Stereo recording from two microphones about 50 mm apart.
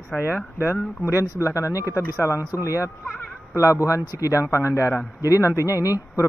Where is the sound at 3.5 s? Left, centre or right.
Left.